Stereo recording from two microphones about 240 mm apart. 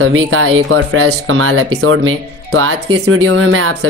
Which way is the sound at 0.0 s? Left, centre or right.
Right.